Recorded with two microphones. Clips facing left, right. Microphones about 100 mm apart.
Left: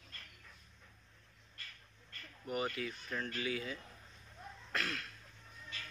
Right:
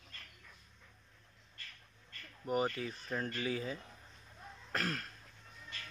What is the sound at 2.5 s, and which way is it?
Speech, 35° right (ahead or behind).